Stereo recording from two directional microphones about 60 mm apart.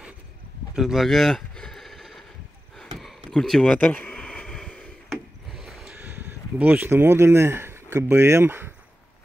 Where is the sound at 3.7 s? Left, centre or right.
Left.